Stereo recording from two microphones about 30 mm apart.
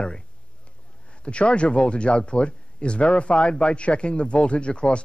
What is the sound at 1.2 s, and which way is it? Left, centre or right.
Speech, left.